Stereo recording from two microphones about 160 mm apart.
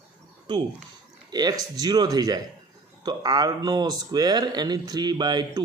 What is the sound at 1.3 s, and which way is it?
Speech, 25° right (ahead or behind).